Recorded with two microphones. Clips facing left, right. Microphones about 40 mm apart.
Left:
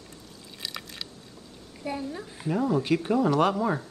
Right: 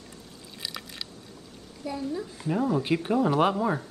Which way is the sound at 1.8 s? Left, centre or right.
Left.